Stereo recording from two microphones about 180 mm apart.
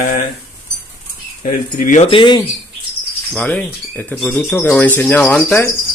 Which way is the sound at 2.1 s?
25° left (ahead or behind).